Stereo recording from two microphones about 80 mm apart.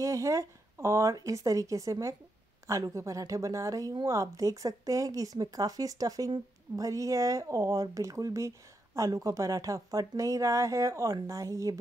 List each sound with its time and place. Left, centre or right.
0.0 s a woman's voice: right